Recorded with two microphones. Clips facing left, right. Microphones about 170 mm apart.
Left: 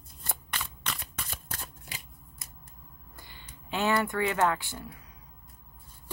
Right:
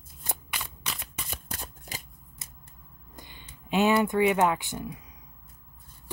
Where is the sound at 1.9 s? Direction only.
45° right (ahead or behind).